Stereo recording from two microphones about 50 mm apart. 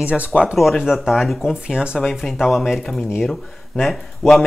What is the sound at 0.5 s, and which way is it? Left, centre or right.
Speech, centre.